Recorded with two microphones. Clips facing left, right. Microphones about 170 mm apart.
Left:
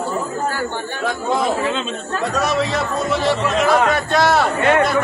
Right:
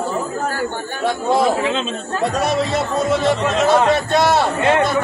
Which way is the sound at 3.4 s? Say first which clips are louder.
Right 1 dB; 25° right (ahead or behind).